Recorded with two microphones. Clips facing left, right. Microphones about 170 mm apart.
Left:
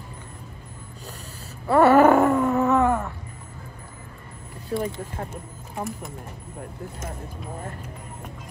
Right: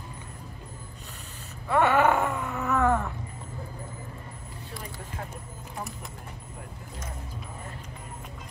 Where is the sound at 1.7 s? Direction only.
40° left (ahead or behind).